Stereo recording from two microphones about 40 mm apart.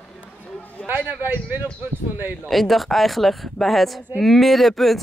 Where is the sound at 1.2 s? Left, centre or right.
Right.